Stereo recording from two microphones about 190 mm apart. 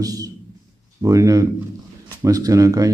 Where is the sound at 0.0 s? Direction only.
20° right (ahead or behind).